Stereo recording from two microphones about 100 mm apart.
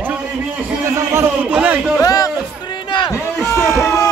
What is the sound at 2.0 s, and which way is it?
Music, 35° left (ahead or behind).